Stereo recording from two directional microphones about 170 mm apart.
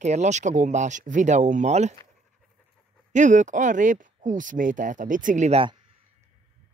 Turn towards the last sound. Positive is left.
turn(degrees=-45)  # may be behind; listen again after turning